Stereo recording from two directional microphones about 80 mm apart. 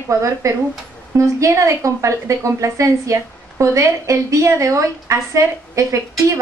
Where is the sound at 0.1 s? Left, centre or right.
Right.